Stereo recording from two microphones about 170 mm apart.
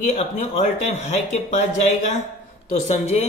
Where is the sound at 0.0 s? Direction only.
45° left (ahead or behind).